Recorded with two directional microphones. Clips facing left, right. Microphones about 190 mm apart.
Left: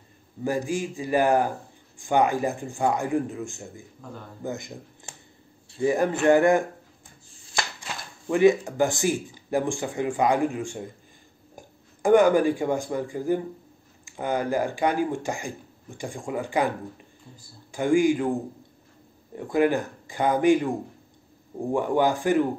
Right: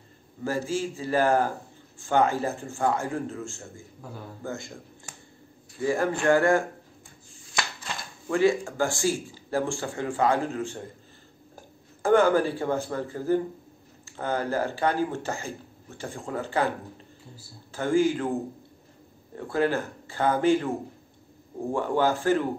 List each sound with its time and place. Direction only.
0.4 s speech: 15° left (ahead or behind)
4.0 s a man's voice: 5° right (ahead or behind)
4.4 s speech: 20° left (ahead or behind)
7.8 s speech: 20° left (ahead or behind)
19.3 s speech: 15° left (ahead or behind)